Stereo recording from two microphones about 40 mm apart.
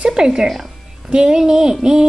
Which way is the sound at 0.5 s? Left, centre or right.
Centre.